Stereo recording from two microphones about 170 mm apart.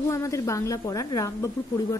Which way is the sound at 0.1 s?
15° left (ahead or behind).